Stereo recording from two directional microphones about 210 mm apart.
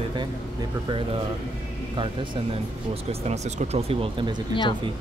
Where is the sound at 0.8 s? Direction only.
25° right (ahead or behind).